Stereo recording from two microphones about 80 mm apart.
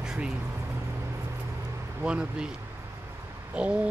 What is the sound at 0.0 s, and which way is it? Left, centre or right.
Vehicle, centre.